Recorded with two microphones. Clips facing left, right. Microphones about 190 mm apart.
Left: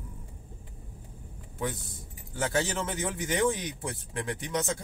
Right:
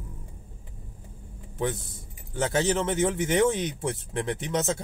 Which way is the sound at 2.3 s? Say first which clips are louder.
Right 5 dB; 20° right (ahead or behind).